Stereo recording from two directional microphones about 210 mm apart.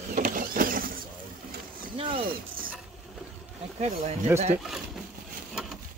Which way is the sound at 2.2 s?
45° right (ahead or behind).